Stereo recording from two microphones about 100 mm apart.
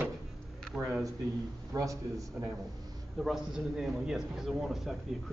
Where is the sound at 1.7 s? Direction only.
35° right (ahead or behind).